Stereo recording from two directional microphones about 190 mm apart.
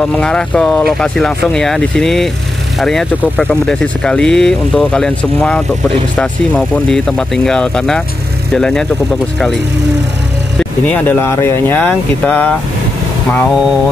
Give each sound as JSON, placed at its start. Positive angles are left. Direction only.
{"t": 0.0, "sound": "speech", "side_deg": 5}
{"t": 10.6, "sound": "speech", "side_deg": 10}